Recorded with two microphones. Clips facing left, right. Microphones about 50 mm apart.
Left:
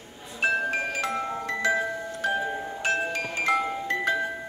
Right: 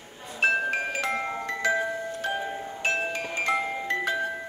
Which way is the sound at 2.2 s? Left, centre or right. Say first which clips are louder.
Left 3 dB; centre.